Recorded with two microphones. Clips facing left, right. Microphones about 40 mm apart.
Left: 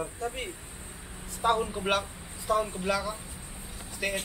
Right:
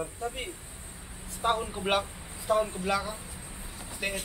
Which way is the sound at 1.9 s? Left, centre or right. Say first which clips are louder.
Right 1 dB; centre.